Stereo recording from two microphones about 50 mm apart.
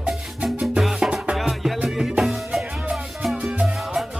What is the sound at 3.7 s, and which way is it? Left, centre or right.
Music, centre.